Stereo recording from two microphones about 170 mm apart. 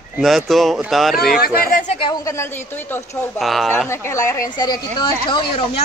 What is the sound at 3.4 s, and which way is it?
Speech, centre (ahead or behind).